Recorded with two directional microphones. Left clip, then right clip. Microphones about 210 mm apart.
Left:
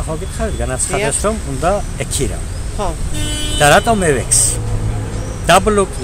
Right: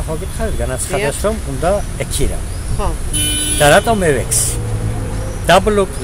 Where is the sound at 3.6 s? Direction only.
Centre (ahead or behind).